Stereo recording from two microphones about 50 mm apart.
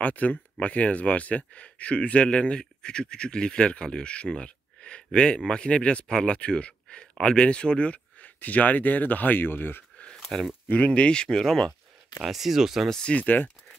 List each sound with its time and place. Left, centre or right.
0.0 s speech: left
10.1 s a sound: centre
10.7 s speech: left
12.2 s speech: centre
13.1 s speech: left